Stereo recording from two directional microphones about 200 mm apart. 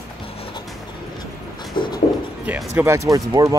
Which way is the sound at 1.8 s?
25° left (ahead or behind).